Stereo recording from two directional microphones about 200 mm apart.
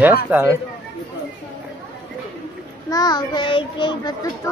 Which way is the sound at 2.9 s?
20° left (ahead or behind).